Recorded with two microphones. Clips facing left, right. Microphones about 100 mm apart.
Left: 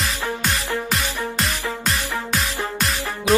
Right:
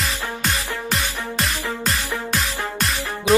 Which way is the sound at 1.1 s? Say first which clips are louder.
Left 2 dB; 20° left (ahead or behind).